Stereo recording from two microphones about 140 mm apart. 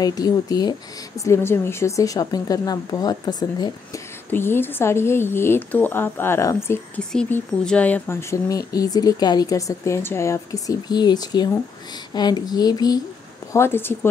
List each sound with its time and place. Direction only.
0.0 s speech: 25° left (ahead or behind)
4.3 s speech: 15° left (ahead or behind)
7.0 s speech: 5° left (ahead or behind); by 13.0 s 30° left (ahead or behind)
13.5 s speech: 15° left (ahead or behind)